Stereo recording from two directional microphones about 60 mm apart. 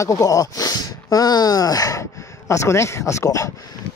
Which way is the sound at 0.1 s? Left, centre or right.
Left.